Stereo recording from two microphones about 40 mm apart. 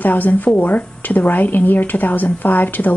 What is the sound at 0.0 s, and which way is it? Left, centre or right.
A woman's voice, left.